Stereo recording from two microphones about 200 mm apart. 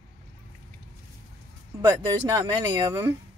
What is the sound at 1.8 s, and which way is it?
Speech, 15° right (ahead or behind).